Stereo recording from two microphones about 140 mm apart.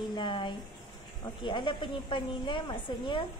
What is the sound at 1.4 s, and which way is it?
A woman's voice, 35° left (ahead or behind).